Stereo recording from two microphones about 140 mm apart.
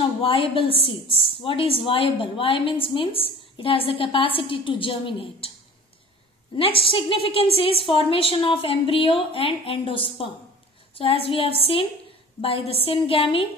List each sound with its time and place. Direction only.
0.0 s a woman's voice: 40° left (ahead or behind)
6.5 s a woman's voice: 40° left (ahead or behind)